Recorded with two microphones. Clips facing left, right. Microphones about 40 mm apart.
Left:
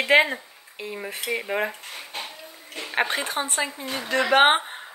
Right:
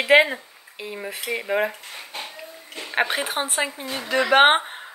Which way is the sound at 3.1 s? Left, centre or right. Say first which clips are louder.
Right 1 dB; right.